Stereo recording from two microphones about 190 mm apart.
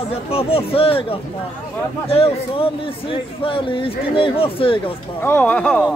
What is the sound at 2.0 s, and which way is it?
Speech, 30° left (ahead or behind).